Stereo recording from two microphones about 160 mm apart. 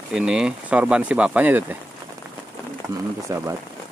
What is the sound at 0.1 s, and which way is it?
Speech, 5° right (ahead or behind).